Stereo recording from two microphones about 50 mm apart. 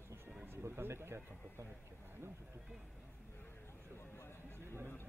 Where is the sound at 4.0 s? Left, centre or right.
Left.